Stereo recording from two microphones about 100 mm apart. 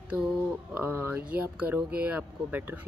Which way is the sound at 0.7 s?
20° right (ahead or behind).